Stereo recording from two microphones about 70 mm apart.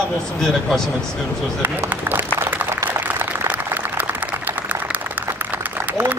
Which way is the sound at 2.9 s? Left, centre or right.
Right.